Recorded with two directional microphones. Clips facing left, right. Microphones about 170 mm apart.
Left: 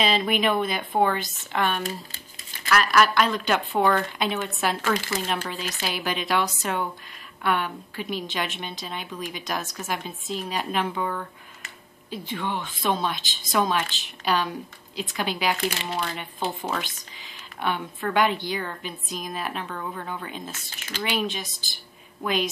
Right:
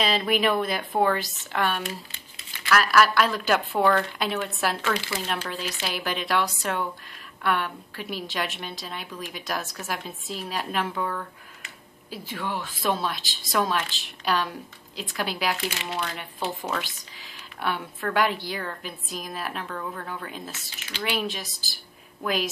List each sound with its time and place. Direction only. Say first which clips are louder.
0.0 s speech: left 1 dB; centre (ahead or behind)
1.8 s crumpling: left 2 dB; 40° left (ahead or behind)
2.7 s speech: even; centre (ahead or behind)
4.9 s speech: left 3 dB; 45° left (ahead or behind)
5.2 s speech: left 1 dB; centre (ahead or behind)